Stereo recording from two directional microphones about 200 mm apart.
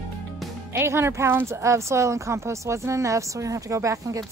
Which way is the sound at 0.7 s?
10° right (ahead or behind).